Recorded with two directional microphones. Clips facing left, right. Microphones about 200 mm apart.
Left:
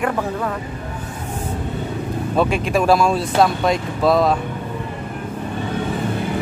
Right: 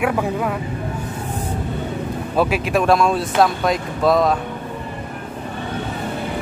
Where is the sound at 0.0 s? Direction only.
10° right (ahead or behind).